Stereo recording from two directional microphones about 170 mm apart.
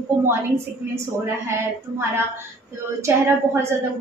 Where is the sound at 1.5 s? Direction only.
15° right (ahead or behind).